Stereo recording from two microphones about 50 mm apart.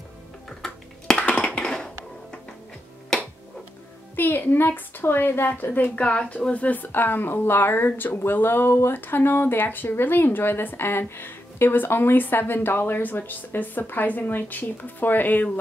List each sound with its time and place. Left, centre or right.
0.6 s a sound: centre
1.2 s tap: left
4.2 s a woman's voice: left
6.0 s a woman's voice: left